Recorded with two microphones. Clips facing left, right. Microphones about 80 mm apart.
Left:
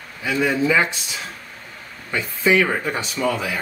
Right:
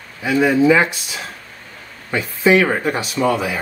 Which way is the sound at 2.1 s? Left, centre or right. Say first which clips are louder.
Right 4 dB; centre.